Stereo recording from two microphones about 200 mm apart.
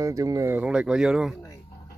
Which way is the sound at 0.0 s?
15° right (ahead or behind).